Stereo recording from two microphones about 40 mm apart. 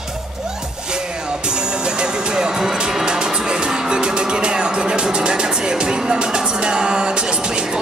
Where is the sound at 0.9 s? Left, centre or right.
Right.